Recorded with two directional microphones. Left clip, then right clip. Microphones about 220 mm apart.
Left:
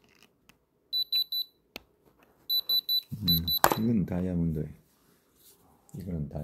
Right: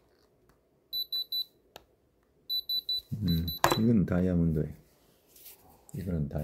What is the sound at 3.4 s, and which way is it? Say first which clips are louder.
Cash register: even; 40° left (ahead or behind).